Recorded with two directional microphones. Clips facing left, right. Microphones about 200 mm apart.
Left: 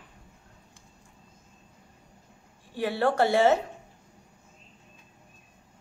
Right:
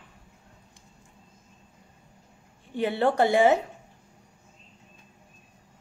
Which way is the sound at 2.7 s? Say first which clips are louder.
Right 2 dB; 20° right (ahead or behind).